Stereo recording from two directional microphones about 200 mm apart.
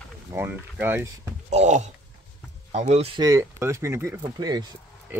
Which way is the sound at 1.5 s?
35° right (ahead or behind).